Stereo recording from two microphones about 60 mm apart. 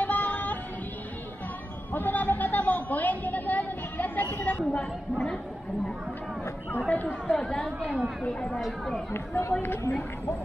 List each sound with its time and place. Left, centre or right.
0.0 s a sound: left
1.9 s a sound: left
6.9 s speech: left
7.3 s speech: centre
8.5 s speech: centre
9.1 s speech: left